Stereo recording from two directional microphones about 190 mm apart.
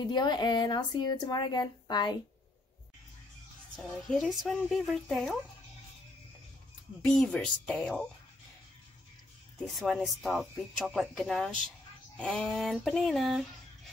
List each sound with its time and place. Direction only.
0.0 s speech: 20° left (ahead or behind)
3.7 s speech: centre (ahead or behind)
7.2 s speech: 5° left (ahead or behind)
9.6 s speech: centre (ahead or behind)